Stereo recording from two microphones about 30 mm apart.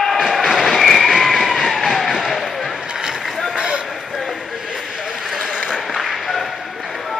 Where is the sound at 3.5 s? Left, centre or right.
Right.